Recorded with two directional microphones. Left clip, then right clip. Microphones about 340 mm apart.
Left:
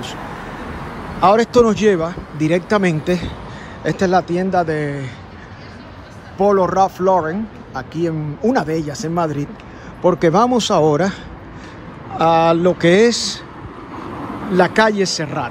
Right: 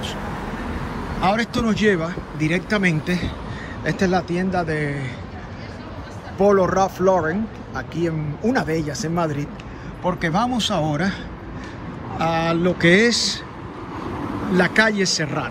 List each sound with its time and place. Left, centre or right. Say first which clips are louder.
1.2 s speech: left 9 dB; centre
6.3 s speech: left 3 dB; centre
12.2 s speech: left 8 dB; centre
14.5 s speech: left 4 dB; centre